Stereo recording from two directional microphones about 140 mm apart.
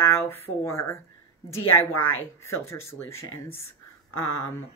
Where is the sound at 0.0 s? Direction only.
15° left (ahead or behind).